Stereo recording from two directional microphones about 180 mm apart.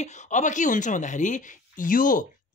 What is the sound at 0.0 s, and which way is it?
Speech, 45° left (ahead or behind).